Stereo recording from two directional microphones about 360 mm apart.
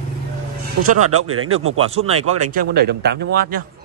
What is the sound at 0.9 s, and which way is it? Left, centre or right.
Speech, right.